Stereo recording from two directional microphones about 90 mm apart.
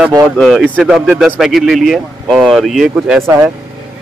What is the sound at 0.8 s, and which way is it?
Speech, 15° right (ahead or behind).